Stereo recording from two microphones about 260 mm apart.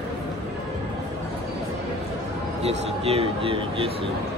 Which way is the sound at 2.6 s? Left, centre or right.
Right.